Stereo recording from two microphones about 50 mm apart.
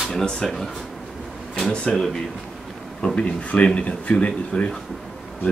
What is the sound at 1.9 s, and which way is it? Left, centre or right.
Speech, centre.